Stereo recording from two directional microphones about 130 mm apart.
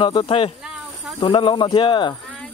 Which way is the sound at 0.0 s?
35° left (ahead or behind).